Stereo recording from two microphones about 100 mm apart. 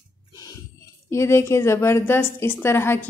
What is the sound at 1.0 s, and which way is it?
A woman's voice, 30° left (ahead or behind).